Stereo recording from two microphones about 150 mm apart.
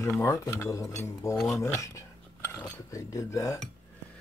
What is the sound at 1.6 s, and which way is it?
Cutlery, 20° left (ahead or behind).